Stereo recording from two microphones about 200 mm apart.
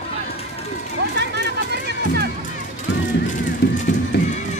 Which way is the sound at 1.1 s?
55° right (ahead or behind).